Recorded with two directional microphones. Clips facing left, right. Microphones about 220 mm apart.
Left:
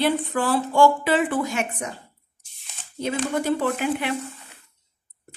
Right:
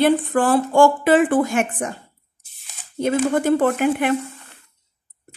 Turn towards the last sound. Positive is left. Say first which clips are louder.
# right 6 dB
turn(degrees=-50)  # may be behind; listen again after turning